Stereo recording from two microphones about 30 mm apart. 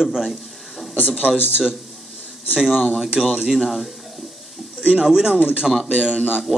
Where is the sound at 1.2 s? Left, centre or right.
Right.